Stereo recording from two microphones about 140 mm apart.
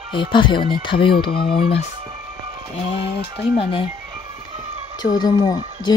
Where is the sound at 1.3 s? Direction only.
90° left.